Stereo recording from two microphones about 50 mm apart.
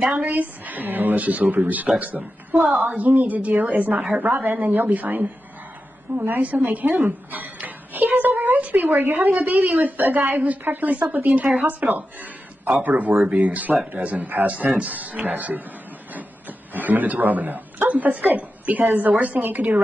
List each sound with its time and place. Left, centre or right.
0.2 s a child's voice: right
16.1 s a sound: right
17.8 s speech: right